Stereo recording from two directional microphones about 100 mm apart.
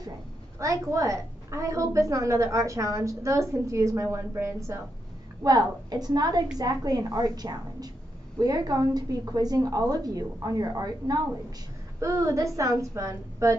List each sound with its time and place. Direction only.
0.6 s a woman's voice: 30° right (ahead or behind)
5.4 s a woman's voice: 40° right (ahead or behind)